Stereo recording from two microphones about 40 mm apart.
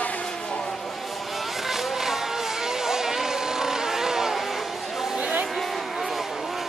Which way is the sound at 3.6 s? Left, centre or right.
Centre.